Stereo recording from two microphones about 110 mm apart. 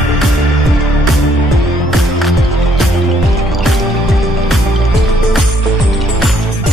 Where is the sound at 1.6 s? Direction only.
Centre (ahead or behind).